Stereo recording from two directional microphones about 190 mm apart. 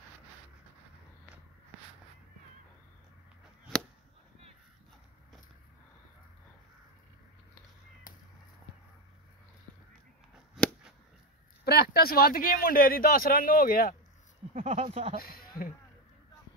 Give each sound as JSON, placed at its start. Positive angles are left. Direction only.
{"t": 8.1, "sound": "chop", "side_deg": 45}
{"t": 10.5, "sound": "a sound", "side_deg": 0}
{"t": 11.6, "sound": "speech", "side_deg": 55}
{"t": 14.5, "sound": "speech", "side_deg": -35}
{"t": 15.1, "sound": "speech", "side_deg": 50}